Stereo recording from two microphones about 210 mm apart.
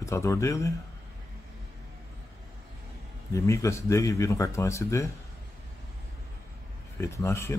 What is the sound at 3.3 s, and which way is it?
Speech, 15° left (ahead or behind).